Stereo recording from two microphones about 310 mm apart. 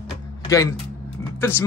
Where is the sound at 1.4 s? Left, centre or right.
Centre.